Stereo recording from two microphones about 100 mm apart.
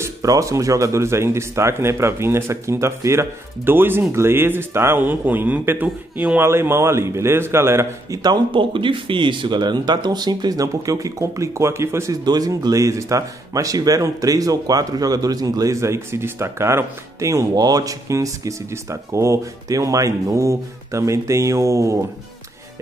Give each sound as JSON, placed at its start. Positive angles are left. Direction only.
{"t": 0.0, "sound": "speech", "side_deg": -35}
{"t": 8.2, "sound": "speech", "side_deg": -50}
{"t": 12.3, "sound": "speech", "side_deg": -40}